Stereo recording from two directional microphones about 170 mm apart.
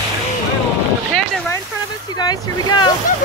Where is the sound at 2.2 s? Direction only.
25° left (ahead or behind).